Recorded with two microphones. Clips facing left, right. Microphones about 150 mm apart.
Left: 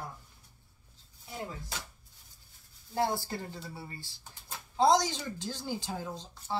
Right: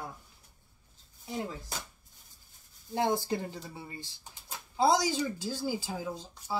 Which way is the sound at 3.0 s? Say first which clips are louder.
Right 2 dB; 20° right (ahead or behind).